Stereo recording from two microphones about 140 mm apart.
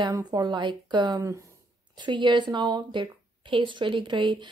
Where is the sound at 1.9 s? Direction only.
35° right (ahead or behind).